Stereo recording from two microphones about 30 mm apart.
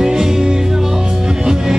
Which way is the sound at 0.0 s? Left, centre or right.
Centre.